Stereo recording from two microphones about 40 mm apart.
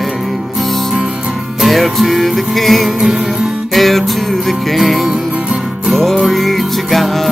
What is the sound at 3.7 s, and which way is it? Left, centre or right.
Music, centre.